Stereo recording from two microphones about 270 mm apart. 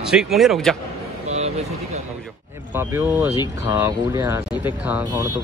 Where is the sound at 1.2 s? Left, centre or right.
Right.